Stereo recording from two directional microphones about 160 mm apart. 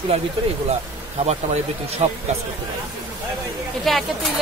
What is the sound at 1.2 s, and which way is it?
A man's voice, 40° right (ahead or behind).